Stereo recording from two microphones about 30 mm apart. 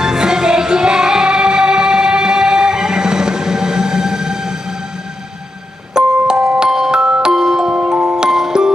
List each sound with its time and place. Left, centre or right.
0.0 s music: right
5.9 s music: right
7.0 s music: right
7.3 s music: centre
8.3 s music: centre